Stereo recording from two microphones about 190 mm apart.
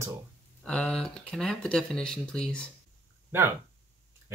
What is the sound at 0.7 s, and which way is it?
Speech, 5° left (ahead or behind).